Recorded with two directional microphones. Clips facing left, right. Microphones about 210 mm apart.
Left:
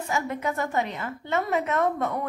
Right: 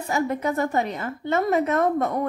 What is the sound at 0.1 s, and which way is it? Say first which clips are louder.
A woman's voice: right 5 dB; 35° right (ahead or behind).